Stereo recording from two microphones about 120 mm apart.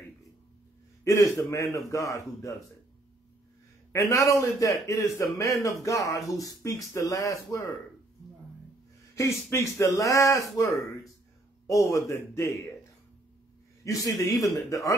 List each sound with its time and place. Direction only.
1.0 s a man's voice: 25° left (ahead or behind)
3.9 s a man's voice: 25° left (ahead or behind)
9.5 s a man's voice: 25° left (ahead or behind)
11.6 s a man's voice: 25° left (ahead or behind)
13.8 s a man's voice: 25° left (ahead or behind)